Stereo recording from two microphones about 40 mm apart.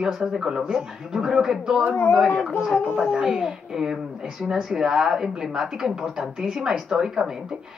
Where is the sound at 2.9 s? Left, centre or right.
Right.